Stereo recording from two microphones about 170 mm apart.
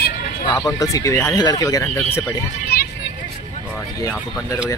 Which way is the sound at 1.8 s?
10° left (ahead or behind).